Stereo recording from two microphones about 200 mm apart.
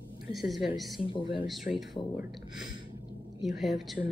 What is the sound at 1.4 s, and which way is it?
Speech, centre (ahead or behind).